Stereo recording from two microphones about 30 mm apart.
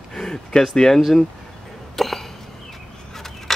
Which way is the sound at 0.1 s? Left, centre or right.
Left.